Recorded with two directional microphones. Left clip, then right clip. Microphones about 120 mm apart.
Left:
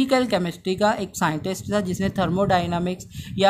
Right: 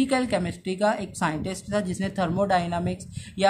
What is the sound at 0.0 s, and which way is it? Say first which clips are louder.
Speech: left 4 dB; 50° left (ahead or behind).